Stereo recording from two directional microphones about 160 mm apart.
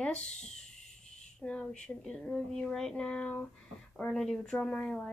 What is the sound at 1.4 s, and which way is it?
Speech, 5° left (ahead or behind).